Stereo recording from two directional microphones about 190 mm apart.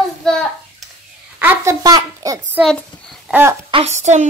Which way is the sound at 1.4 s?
10° right (ahead or behind).